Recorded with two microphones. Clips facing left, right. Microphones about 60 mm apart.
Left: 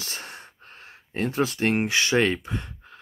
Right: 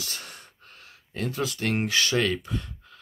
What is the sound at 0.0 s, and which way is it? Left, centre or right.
Speech, left.